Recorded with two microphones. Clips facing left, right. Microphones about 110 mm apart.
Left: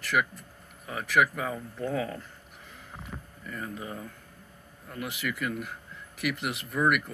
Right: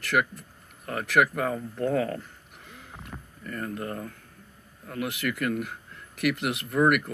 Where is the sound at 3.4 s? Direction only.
60° right (ahead or behind).